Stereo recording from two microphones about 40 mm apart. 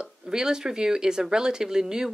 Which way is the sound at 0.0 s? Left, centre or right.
Centre.